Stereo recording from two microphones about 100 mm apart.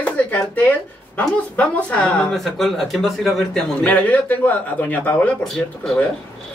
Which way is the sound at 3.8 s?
15° left (ahead or behind).